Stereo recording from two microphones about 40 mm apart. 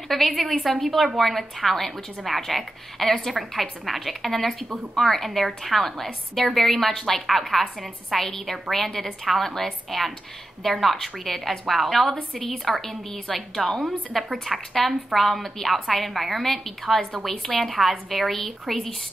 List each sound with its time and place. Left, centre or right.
0.3 s a woman's voice: centre
17.3 s a woman's voice: left
17.6 s a woman's voice: centre